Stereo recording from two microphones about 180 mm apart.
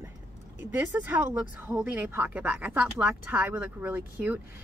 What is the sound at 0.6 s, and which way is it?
Speech, 10° right (ahead or behind).